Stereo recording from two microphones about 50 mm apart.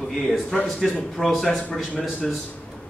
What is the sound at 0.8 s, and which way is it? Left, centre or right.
A man's voice, centre.